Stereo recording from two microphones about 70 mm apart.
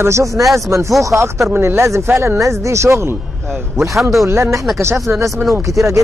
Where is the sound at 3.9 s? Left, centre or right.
Centre.